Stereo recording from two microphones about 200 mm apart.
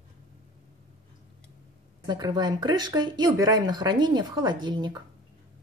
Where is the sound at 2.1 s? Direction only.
20° right (ahead or behind).